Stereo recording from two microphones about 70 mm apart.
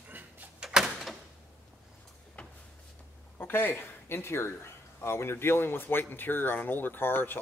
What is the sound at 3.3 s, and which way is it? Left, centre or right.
A man's voice, left.